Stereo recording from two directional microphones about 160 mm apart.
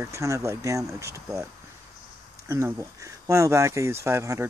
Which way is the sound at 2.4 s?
15° right (ahead or behind).